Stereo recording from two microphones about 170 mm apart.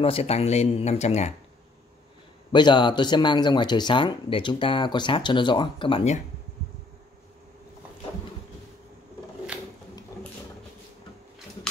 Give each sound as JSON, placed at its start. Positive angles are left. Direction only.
{"t": 0.0, "sound": "speech", "side_deg": 35}
{"t": 2.5, "sound": "speech", "side_deg": 25}